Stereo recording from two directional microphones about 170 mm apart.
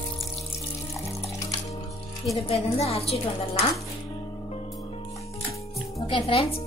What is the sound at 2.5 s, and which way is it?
Speech, 35° left (ahead or behind).